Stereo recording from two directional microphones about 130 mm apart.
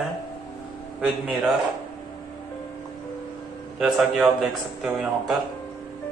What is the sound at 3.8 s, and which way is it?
A man's voice, centre (ahead or behind).